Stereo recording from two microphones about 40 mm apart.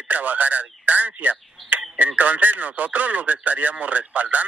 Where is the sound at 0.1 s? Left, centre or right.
Right.